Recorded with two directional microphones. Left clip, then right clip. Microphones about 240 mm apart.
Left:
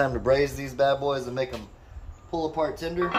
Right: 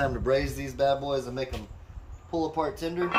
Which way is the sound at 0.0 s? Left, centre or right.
Centre.